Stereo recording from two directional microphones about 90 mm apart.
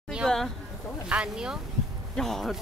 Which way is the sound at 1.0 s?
10° right (ahead or behind).